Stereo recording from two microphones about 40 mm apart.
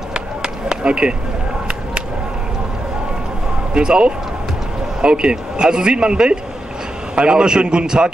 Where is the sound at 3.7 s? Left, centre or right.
Right.